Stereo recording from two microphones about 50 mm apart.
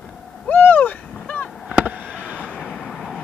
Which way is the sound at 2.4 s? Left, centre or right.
Centre.